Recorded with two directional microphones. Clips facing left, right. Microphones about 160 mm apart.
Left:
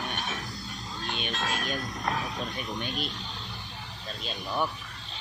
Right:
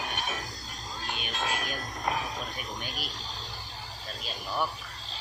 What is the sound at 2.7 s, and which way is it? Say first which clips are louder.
Speech: left 5 dB; 25° left (ahead or behind).